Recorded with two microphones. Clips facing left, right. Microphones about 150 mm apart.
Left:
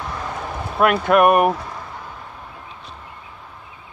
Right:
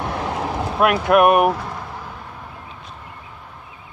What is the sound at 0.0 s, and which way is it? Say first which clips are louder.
Vehicle: right 4 dB; 75° right (ahead or behind).